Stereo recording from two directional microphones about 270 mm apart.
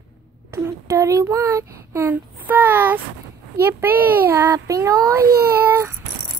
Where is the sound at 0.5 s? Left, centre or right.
Centre.